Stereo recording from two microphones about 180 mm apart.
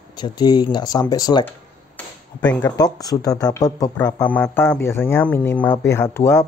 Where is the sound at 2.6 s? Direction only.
20° left (ahead or behind).